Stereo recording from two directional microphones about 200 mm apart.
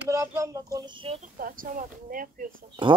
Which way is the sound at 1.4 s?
45° right (ahead or behind).